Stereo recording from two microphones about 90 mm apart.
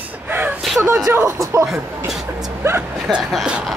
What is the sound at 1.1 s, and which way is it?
Speech, 35° right (ahead or behind).